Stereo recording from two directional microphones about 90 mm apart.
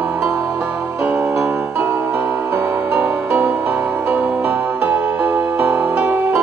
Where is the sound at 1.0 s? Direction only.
15° right (ahead or behind).